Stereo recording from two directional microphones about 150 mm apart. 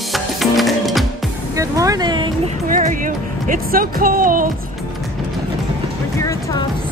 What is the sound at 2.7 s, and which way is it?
Music, 60° right (ahead or behind).